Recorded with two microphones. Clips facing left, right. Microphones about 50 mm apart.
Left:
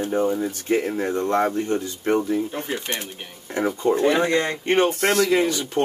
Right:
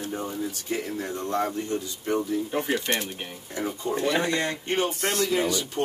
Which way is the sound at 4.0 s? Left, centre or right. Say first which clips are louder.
Left 3 dB; left.